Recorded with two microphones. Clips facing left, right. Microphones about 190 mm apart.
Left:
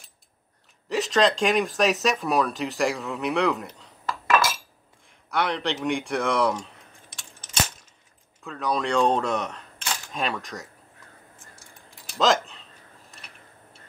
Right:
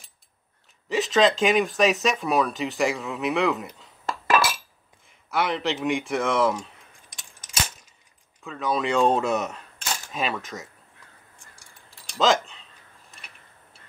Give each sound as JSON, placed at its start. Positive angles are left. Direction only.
{"t": 0.8, "sound": "speech", "side_deg": 0}
{"t": 4.0, "sound": "chink", "side_deg": -30}
{"t": 5.3, "sound": "speech", "side_deg": -5}
{"t": 8.4, "sound": "speech", "side_deg": 0}
{"t": 11.5, "sound": "keys jangling", "side_deg": 25}
{"t": 12.1, "sound": "speech", "side_deg": 0}